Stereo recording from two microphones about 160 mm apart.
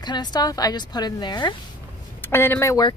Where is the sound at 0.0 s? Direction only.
25° left (ahead or behind).